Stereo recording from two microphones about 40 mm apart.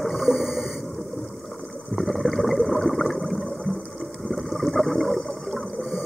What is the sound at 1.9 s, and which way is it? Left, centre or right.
Boat, centre.